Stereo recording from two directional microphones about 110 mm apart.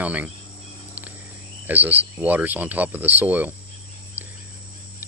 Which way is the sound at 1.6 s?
15° right (ahead or behind).